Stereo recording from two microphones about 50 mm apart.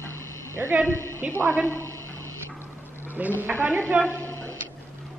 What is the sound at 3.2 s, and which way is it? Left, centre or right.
Speech, right.